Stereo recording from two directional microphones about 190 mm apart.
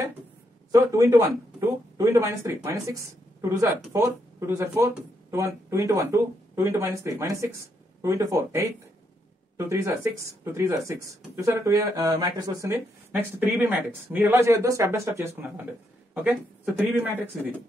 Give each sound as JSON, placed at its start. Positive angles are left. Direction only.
{"t": 0.7, "sound": "speech", "side_deg": -15}